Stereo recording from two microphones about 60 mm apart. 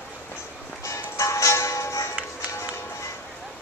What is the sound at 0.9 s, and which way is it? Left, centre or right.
Music, left.